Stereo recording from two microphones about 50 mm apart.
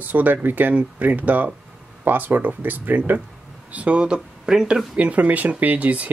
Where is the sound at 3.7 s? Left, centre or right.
Right.